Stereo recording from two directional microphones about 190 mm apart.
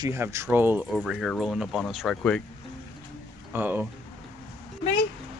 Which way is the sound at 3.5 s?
10° right (ahead or behind).